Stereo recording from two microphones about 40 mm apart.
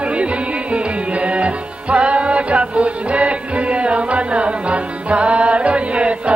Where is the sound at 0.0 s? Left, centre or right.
Right.